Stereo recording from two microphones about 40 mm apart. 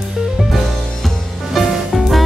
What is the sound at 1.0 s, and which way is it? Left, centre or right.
Music, centre.